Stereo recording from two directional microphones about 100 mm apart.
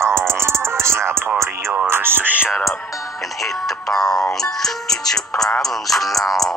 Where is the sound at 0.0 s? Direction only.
25° right (ahead or behind).